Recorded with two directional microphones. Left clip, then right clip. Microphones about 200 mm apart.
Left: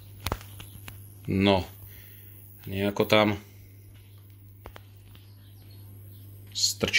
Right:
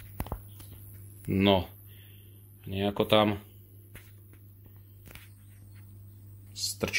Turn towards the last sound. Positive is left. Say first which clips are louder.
# left 7 dB
turn(degrees=5)  # may be behind; listen again after turning